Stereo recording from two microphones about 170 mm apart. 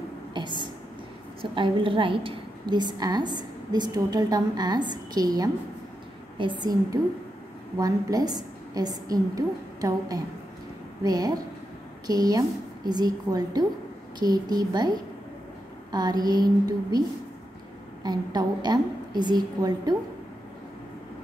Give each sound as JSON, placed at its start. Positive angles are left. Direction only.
{"t": 0.3, "sound": "a woman's voice", "side_deg": -25}
{"t": 18.0, "sound": "a woman's voice", "side_deg": -25}